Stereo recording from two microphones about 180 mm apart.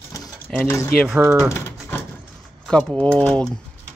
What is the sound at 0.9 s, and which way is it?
Speech, centre (ahead or behind).